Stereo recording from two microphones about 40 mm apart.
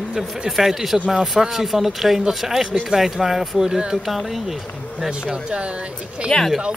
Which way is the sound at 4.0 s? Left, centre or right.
Centre.